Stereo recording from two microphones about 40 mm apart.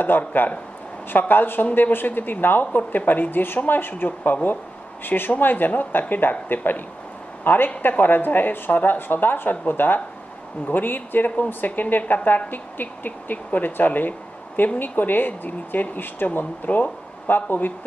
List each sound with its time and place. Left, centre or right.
0.1 s a woman's voice: left
5.0 s a woman's voice: left
16.3 s speech: left